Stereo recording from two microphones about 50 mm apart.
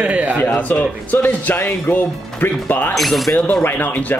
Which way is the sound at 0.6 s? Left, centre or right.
Left.